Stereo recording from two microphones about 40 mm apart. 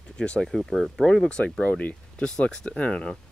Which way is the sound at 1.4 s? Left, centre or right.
Left.